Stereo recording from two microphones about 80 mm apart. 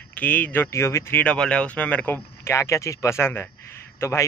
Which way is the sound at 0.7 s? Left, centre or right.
Left.